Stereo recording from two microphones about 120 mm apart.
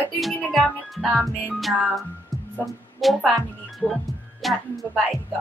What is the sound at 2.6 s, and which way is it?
Speech, centre (ahead or behind).